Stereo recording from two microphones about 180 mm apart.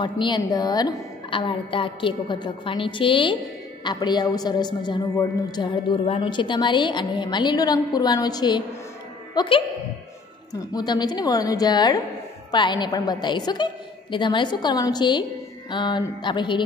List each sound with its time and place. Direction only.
0.0 s a woman's voice: 25° left (ahead or behind)